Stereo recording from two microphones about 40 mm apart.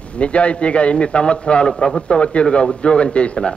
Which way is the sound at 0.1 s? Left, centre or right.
Left.